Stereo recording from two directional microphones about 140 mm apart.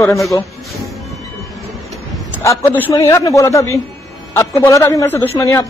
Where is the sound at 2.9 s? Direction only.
25° left (ahead or behind).